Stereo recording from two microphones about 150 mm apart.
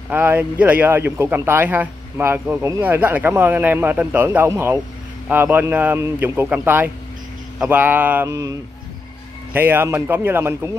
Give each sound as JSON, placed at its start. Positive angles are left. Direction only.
{"t": 0.1, "sound": "a man's voice", "side_deg": -10}
{"t": 8.3, "sound": "a man's voice", "side_deg": -20}